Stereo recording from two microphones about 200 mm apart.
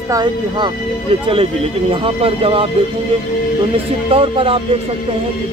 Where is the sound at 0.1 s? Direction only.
20° right (ahead or behind).